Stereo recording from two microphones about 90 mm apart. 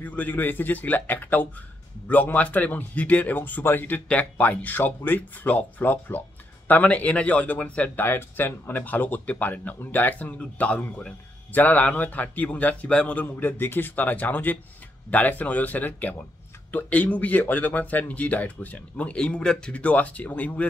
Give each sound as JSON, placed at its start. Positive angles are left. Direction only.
{"t": 0.0, "sound": "a man's voice", "side_deg": 20}